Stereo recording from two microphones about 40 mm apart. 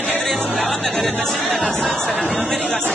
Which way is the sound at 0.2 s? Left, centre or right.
Centre.